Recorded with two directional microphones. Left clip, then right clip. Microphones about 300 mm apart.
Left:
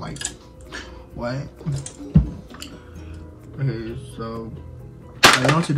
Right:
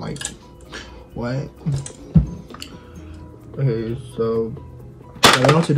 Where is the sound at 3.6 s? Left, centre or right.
Centre.